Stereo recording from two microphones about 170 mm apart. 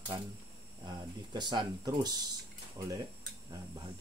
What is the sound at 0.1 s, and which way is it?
Speech, 25° right (ahead or behind).